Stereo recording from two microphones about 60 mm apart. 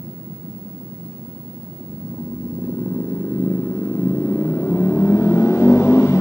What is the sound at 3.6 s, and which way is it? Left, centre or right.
Vehicle, left.